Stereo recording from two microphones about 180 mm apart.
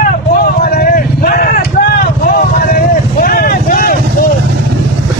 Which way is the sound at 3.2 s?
55° left (ahead or behind).